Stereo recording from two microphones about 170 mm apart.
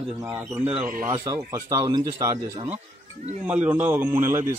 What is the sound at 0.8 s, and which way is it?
Speech, 50° right (ahead or behind).